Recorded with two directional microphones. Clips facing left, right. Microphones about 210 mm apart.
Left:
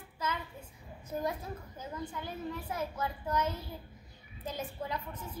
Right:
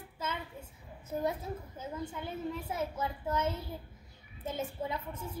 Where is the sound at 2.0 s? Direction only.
25° right (ahead or behind).